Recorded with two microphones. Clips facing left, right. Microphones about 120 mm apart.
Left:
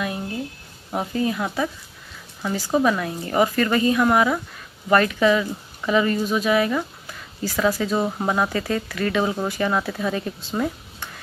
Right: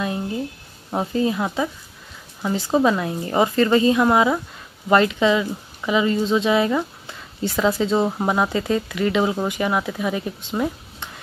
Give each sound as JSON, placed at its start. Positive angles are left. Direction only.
{"t": 0.9, "sound": "a woman's voice", "side_deg": -25}